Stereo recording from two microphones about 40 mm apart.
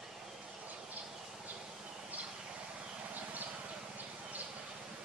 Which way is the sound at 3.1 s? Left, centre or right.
Right.